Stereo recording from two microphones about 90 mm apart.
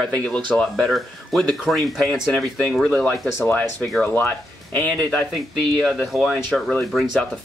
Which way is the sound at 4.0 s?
20° left (ahead or behind).